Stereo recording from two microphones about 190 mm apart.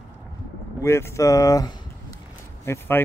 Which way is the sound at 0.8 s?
15° left (ahead or behind).